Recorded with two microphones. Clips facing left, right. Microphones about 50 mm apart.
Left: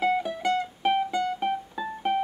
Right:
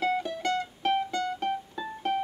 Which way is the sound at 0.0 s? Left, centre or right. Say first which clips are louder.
Left 3 dB; centre.